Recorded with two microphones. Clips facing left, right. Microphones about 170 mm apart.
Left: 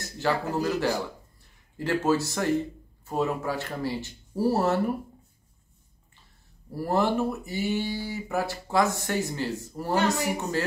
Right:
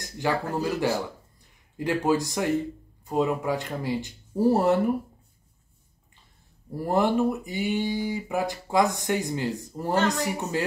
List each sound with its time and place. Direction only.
0.0 s speech: 15° right (ahead or behind)
6.7 s speech: 20° right (ahead or behind)